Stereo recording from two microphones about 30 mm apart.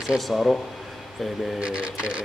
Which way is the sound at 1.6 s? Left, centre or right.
Right.